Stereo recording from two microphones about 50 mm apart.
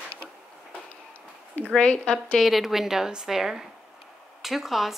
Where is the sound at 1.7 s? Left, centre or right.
Centre.